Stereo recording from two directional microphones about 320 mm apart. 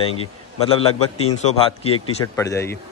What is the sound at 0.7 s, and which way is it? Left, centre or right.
A man's voice, centre.